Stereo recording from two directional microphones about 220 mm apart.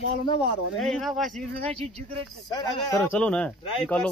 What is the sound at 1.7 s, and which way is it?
Speech, 25° right (ahead or behind).